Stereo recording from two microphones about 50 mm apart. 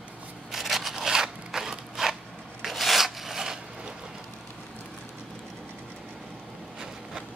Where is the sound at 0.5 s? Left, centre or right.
Centre.